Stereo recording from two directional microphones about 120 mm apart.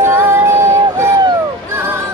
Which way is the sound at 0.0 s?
20° right (ahead or behind).